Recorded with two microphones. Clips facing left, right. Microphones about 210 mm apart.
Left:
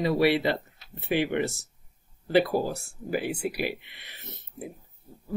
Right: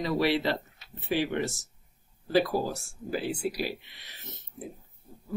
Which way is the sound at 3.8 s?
60° left (ahead or behind).